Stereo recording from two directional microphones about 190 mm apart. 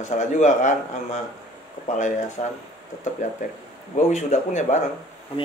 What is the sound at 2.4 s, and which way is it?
Speech, 40° left (ahead or behind).